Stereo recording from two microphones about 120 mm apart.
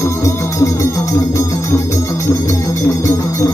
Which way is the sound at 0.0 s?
25° left (ahead or behind).